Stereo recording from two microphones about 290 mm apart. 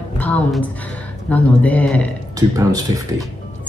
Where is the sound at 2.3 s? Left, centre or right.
Centre.